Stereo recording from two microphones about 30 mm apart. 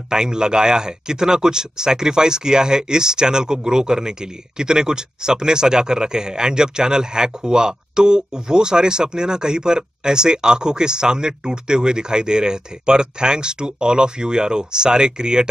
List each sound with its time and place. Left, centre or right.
0.1 s speech: right